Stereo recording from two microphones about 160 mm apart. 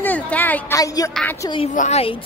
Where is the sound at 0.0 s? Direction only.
10° left (ahead or behind).